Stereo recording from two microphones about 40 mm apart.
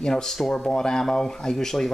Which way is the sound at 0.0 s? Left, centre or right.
Centre.